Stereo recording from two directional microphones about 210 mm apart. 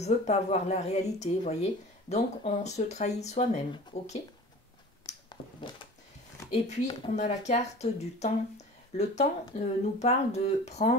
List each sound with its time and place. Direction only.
0.0 s speech: 30° left (ahead or behind)
6.5 s speech: 30° left (ahead or behind)